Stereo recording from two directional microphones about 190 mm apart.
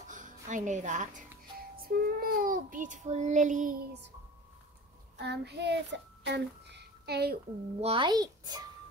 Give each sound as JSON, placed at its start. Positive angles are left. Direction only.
{"t": 0.0, "sound": "a woman's voice", "side_deg": -40}
{"t": 1.8, "sound": "child singing", "side_deg": -50}
{"t": 5.2, "sound": "child singing", "side_deg": -60}
{"t": 7.8, "sound": "a child's voice", "side_deg": -25}